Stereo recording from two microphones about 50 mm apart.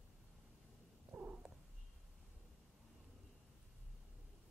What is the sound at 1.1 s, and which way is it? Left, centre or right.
Cat, right.